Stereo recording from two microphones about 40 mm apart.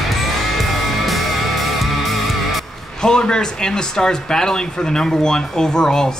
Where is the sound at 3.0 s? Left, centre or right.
Centre.